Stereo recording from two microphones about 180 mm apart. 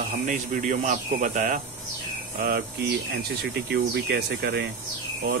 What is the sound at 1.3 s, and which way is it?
Speech, 40° right (ahead or behind).